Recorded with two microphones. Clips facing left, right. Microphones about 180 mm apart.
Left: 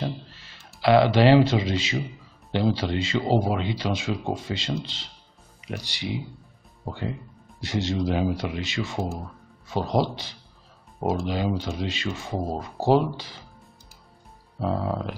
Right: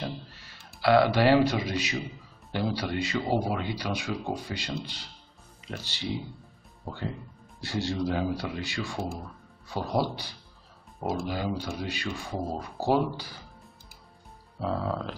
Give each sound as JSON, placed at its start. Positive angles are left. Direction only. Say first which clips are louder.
{"t": 0.0, "sound": "a sound", "louder": "left 4 dB", "side_deg": 25}
{"t": 0.7, "sound": "speech", "louder": "left 3 dB", "side_deg": 20}
{"t": 14.6, "sound": "speech", "louder": "left 3 dB", "side_deg": 20}